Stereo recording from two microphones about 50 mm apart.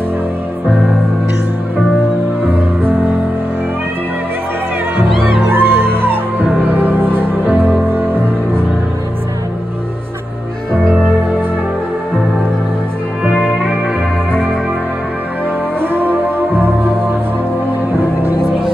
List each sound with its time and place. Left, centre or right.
0.7 s music: centre
2.5 s music: right
5.2 s music: right
14.3 s music: centre
15.8 s music: right